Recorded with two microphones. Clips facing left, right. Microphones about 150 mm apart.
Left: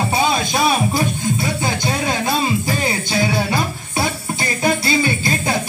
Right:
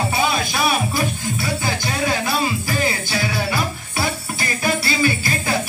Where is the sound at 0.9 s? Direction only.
20° left (ahead or behind).